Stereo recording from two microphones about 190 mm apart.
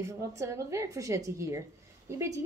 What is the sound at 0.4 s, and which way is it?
A woman's voice, 15° right (ahead or behind).